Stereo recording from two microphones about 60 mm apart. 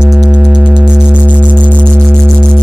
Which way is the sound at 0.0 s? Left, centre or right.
Centre.